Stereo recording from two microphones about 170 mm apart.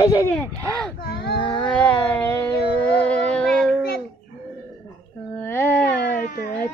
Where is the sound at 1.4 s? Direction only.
30° left (ahead or behind).